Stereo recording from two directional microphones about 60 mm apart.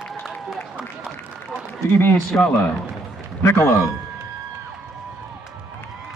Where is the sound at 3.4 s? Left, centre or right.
Left.